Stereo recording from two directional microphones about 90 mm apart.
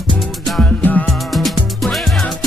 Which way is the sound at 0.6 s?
20° left (ahead or behind).